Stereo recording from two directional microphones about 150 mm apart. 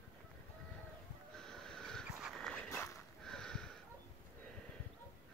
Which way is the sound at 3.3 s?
5° left (ahead or behind).